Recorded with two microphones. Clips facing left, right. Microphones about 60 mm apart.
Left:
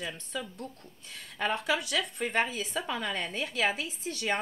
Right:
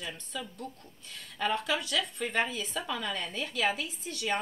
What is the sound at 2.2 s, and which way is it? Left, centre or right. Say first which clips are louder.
Speech: left 2 dB; left.